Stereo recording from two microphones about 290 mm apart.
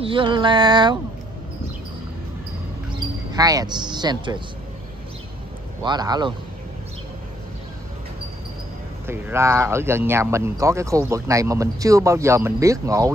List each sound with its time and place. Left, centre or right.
0.0 s speech: centre
3.3 s speech: centre
5.8 s speech: centre
9.0 s speech: centre